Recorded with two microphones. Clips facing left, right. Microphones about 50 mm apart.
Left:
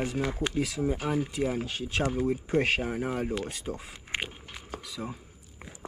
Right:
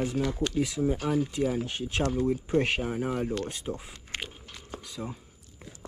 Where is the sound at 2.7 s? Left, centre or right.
Left.